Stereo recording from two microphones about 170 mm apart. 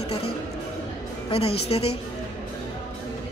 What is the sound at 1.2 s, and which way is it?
Speech, 35° left (ahead or behind).